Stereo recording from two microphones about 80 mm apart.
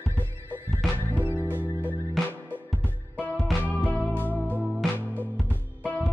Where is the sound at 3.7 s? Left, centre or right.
Centre.